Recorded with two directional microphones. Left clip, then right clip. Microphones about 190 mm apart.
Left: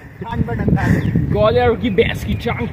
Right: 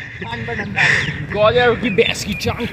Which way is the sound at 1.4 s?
40° left (ahead or behind).